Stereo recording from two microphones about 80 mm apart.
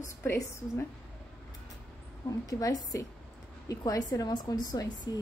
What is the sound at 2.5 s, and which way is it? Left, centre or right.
A woman's voice, left.